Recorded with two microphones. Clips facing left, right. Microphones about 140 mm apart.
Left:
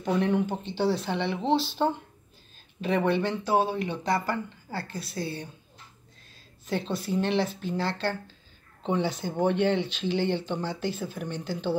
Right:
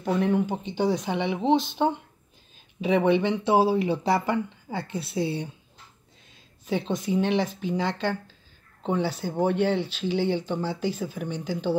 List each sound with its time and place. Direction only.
0.0 s speech: 5° right (ahead or behind)
2.8 s speech: 15° right (ahead or behind)
6.6 s speech: 15° right (ahead or behind)